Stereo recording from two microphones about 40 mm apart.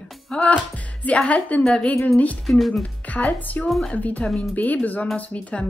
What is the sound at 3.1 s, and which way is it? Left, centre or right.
A woman's voice, left.